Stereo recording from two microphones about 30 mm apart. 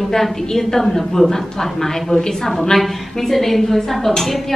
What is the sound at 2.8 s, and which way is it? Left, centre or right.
A woman's voice, centre.